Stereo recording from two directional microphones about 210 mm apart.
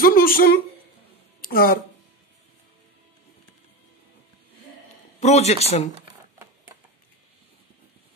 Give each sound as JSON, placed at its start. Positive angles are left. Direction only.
{"t": 0.0, "sound": "a sound", "side_deg": 45}
{"t": 1.4, "sound": "speech", "side_deg": 45}
{"t": 5.2, "sound": "speech", "side_deg": 30}